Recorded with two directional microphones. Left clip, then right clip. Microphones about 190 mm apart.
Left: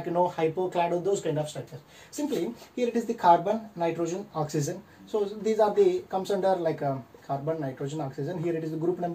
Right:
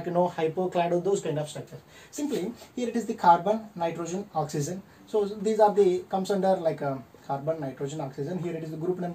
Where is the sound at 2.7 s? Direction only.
15° right (ahead or behind).